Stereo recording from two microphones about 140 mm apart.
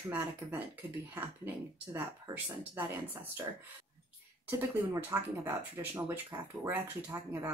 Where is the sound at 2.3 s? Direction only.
25° right (ahead or behind).